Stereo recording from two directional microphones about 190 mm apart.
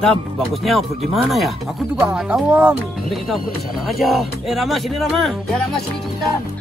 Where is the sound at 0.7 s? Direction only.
Centre (ahead or behind).